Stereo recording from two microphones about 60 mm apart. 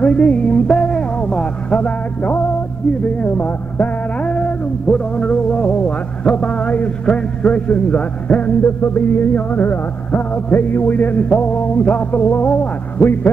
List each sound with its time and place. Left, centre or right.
0.0 s music: left
0.7 s music: centre
1.3 s speech: centre
3.2 s a sound: left
8.6 s a sound: left
12.3 s radio: left